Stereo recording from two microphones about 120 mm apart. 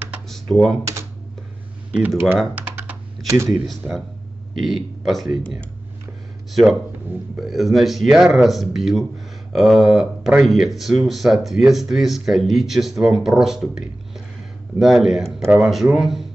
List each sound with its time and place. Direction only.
0.3 s computer keyboard: centre (ahead or behind)
1.9 s speech: 15° right (ahead or behind)
2.5 s typing: 15° right (ahead or behind)
3.3 s speech: 25° right (ahead or behind)
4.6 s speech: centre (ahead or behind)